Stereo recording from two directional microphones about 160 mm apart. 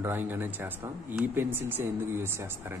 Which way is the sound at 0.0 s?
10° right (ahead or behind).